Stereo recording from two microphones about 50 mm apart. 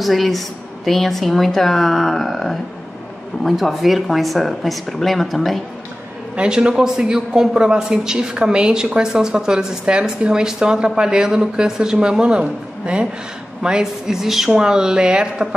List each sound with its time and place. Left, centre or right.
0.0 s a woman's voice: centre
6.3 s a man's voice: centre